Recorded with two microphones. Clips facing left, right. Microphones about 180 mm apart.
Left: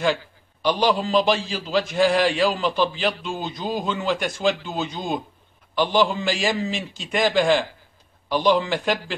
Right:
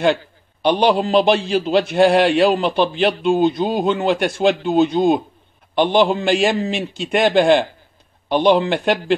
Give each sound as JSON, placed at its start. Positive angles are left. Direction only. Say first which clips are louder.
{"t": 0.0, "sound": "a man's voice", "louder": "right 5 dB", "side_deg": -65}